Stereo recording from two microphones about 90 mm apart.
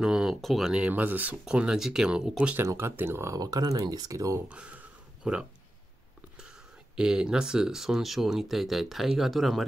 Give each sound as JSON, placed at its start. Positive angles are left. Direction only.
{"t": 0.0, "sound": "speech", "side_deg": -5}
{"t": 0.8, "sound": "speech", "side_deg": -20}
{"t": 2.6, "sound": "speech", "side_deg": -30}
{"t": 3.3, "sound": "speech", "side_deg": -45}
{"t": 4.5, "sound": "a sound", "side_deg": -15}
{"t": 7.0, "sound": "speech", "side_deg": -10}